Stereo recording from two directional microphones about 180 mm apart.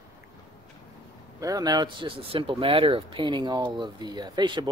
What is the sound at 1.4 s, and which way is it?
Speech, 20° right (ahead or behind).